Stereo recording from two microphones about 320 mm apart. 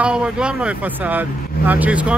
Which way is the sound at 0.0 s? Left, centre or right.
Centre.